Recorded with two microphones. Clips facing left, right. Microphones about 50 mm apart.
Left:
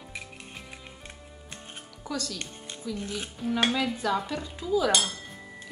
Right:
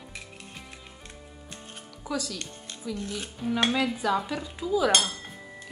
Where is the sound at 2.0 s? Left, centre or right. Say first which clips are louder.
Right 2 dB; centre.